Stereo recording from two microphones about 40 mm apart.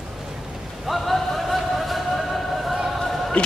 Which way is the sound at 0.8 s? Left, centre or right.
Centre.